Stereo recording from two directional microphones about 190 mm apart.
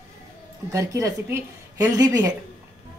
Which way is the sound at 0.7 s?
15° right (ahead or behind).